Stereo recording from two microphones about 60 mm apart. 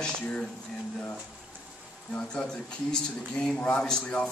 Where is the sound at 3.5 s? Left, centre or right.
Left.